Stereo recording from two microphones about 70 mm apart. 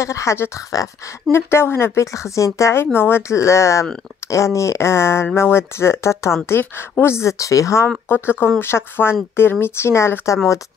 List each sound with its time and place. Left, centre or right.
0.0 s speech: left
1.3 s speech: left
8.1 s speech: left